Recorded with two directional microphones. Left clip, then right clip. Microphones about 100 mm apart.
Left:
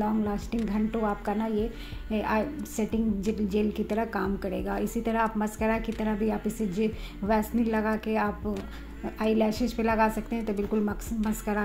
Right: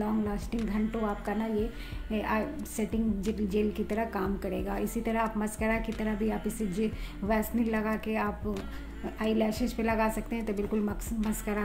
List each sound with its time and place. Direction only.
0.0 s a woman's voice: 30° left (ahead or behind)